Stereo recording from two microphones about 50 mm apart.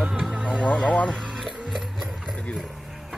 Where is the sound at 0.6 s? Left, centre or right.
Left.